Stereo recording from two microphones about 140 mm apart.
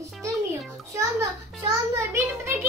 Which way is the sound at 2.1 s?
20° right (ahead or behind).